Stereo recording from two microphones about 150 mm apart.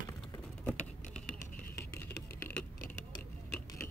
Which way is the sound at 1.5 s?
70° left (ahead or behind).